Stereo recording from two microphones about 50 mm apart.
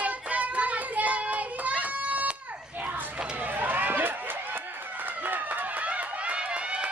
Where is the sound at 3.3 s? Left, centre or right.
Right.